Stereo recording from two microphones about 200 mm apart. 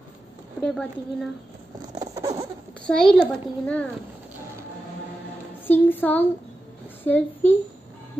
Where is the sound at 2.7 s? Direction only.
5° left (ahead or behind).